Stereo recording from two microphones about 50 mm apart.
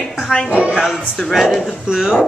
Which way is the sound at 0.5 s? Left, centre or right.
Right.